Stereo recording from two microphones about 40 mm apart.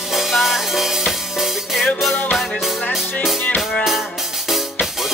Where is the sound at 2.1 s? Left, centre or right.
Left.